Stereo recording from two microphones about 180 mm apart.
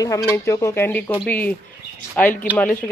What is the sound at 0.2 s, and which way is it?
Speech, 15° left (ahead or behind).